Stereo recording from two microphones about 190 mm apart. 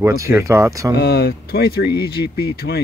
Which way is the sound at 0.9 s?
55° left (ahead or behind).